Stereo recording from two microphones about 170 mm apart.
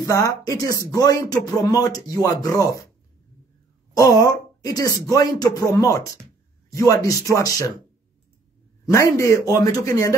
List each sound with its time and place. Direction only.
0.2 s speech: 20° left (ahead or behind)
3.9 s speech: 20° left (ahead or behind)
8.8 s speech: 20° left (ahead or behind)